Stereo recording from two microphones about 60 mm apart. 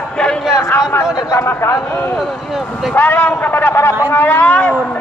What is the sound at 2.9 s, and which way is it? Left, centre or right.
A man's voice, left.